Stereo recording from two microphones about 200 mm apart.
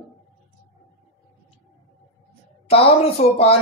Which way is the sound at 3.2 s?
40° left (ahead or behind).